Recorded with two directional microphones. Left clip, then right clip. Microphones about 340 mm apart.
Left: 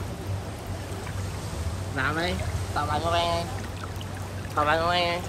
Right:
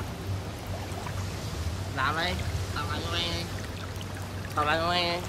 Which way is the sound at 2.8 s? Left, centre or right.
Centre.